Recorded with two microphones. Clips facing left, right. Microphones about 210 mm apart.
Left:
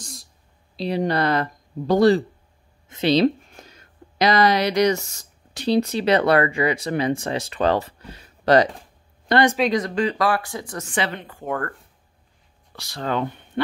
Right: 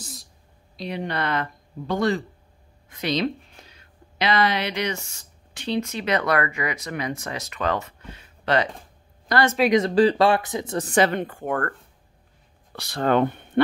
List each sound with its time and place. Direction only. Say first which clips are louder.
0.0 s a sound: even; centre (ahead or behind)
0.7 s speech: left 6 dB; 35° left (ahead or behind)
3.4 s speech: left 4 dB; 45° left (ahead or behind)
9.3 s speech: left 3 dB; 20° left (ahead or behind)
9.7 s speech: right 4 dB; 25° right (ahead or behind)
10.9 s a woman's voice: right 6 dB; 45° right (ahead or behind)
12.7 s speech: right 5 dB; 60° right (ahead or behind)